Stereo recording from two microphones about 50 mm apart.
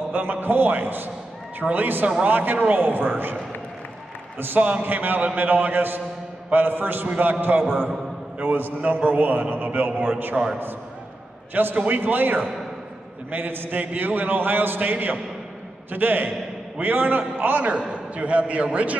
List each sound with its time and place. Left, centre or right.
0.1 s a man's voice: right
4.6 s a man's voice: right
4.8 s a man's voice: right
10.3 s a man's voice: centre
11.5 s a man's voice: right
17.6 s a man's voice: right